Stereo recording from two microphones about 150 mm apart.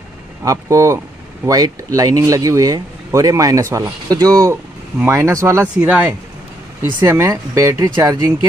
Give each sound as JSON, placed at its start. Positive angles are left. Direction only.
{"t": 0.5, "sound": "speech", "side_deg": -20}
{"t": 5.8, "sound": "speech", "side_deg": -10}
{"t": 7.0, "sound": "speech", "side_deg": -20}